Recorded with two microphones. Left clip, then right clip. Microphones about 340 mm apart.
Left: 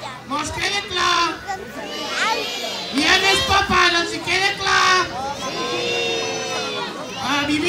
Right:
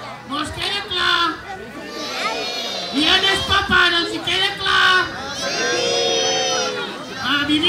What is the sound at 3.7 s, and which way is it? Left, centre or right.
Child singing, centre.